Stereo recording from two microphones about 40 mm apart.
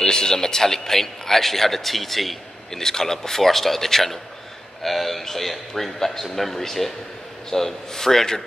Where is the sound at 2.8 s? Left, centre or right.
Centre.